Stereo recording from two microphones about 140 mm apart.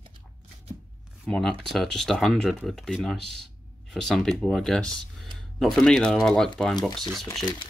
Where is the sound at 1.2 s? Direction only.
5° left (ahead or behind).